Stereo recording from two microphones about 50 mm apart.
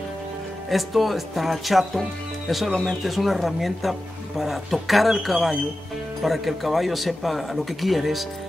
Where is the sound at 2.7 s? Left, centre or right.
Centre.